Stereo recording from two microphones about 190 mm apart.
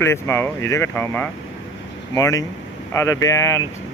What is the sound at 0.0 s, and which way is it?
Speech, 10° left (ahead or behind).